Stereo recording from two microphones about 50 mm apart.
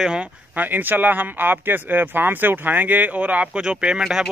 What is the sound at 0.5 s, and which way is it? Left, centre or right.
Speech, right.